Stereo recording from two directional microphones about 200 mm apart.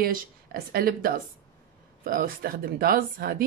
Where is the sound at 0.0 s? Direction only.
50° right (ahead or behind).